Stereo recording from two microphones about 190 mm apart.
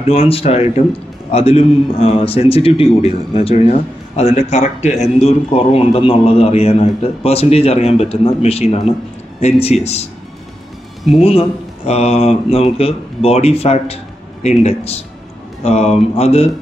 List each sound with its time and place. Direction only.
0.0 s a man's voice: 30° left (ahead or behind)
11.1 s a man's voice: 30° left (ahead or behind)